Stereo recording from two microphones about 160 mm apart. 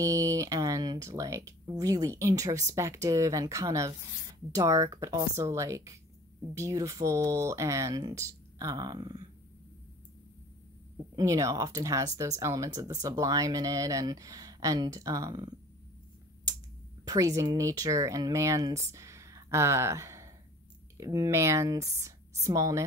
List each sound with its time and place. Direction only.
0.0 s speech: 20° right (ahead or behind)
11.1 s speech: 20° right (ahead or behind)
17.0 s speech: 20° right (ahead or behind)